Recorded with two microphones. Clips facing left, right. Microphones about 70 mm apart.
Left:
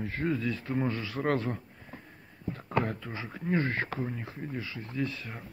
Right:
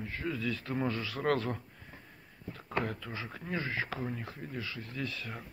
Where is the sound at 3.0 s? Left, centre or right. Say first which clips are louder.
Left 2 dB; left.